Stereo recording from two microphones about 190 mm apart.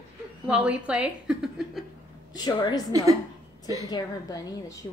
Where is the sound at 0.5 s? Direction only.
5° right (ahead or behind).